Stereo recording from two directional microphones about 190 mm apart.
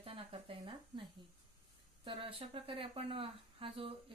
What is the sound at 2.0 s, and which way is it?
Speech, 25° right (ahead or behind).